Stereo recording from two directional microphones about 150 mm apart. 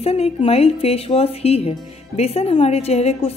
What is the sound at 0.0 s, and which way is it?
A woman's voice, 40° left (ahead or behind).